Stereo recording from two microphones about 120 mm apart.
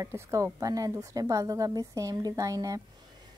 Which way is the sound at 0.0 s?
30° right (ahead or behind).